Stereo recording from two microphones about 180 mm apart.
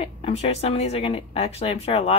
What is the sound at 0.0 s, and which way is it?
A woman's voice, 35° left (ahead or behind).